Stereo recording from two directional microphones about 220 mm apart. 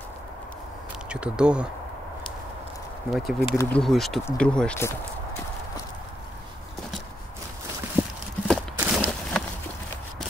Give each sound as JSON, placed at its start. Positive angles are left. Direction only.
{"t": 1.0, "sound": "speech", "side_deg": -5}
{"t": 3.1, "sound": "speech", "side_deg": 0}
{"t": 3.4, "sound": "speech", "side_deg": 10}
{"t": 8.0, "sound": "a sound", "side_deg": -5}
{"t": 8.5, "sound": "walk", "side_deg": -5}